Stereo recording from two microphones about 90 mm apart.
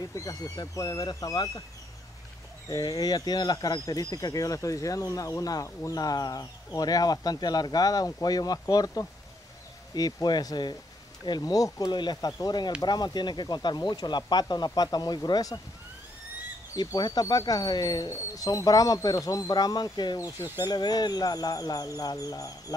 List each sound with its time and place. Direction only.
0.1 s speech: 40° left (ahead or behind)
2.7 s speech: 45° left (ahead or behind)
16.7 s speech: 50° left (ahead or behind)